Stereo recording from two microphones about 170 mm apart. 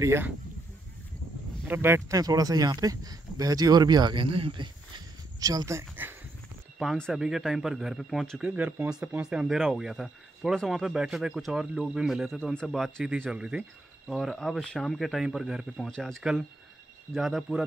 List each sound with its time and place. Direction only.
0.0 s speech: 15° right (ahead or behind)
1.7 s speech: 15° right (ahead or behind)
6.8 s speech: centre (ahead or behind)